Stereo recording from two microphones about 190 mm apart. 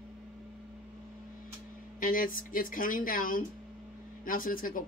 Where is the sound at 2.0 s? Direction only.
45° left (ahead or behind).